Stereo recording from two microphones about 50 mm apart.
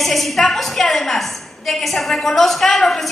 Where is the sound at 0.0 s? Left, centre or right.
Centre.